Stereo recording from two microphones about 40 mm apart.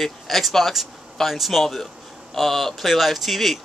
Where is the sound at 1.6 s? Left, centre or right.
Centre.